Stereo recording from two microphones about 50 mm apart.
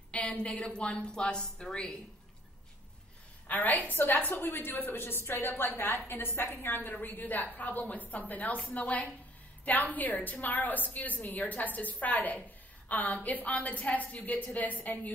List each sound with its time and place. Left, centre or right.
0.1 s a woman's voice: left
3.4 s a woman's voice: left